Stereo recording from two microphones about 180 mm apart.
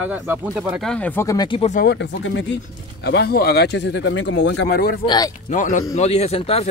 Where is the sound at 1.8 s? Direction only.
75° left (ahead or behind).